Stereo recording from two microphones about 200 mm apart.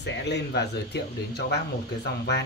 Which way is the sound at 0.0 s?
60° left (ahead or behind).